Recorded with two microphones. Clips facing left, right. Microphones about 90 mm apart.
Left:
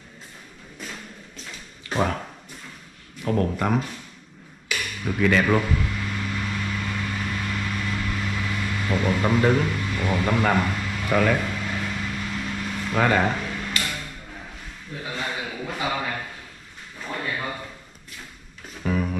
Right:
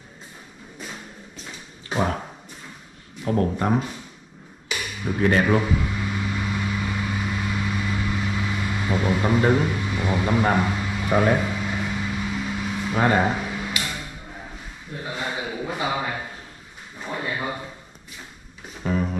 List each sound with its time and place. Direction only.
3.3 s speech: 25° right (ahead or behind)
4.6 s music: 15° right (ahead or behind)
5.4 s vehicle: 10° right (ahead or behind)
9.4 s a man's voice: 15° right (ahead or behind)
10.6 s a sound: 10° right (ahead or behind)
11.1 s speech: 25° right (ahead or behind)
11.3 s a sound: 10° right (ahead or behind)
15.0 s a sound: 10° right (ahead or behind)
18.8 s music: 25° right (ahead or behind)